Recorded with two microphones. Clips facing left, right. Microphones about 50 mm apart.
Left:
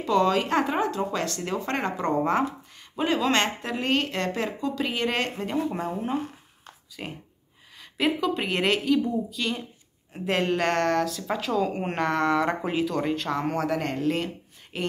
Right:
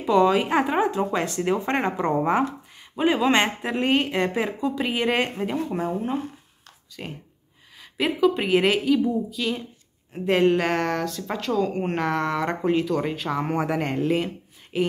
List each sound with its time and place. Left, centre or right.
0.0 s speech: centre
5.6 s speech: centre
14.1 s a sound: centre